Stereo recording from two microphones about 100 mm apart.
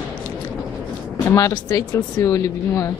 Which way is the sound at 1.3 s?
30° left (ahead or behind).